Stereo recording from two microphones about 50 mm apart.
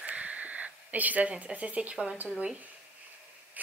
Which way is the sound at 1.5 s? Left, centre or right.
Right.